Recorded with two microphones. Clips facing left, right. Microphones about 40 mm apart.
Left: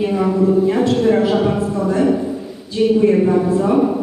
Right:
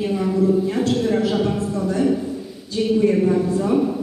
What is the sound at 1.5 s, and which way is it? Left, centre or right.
A woman's voice, left.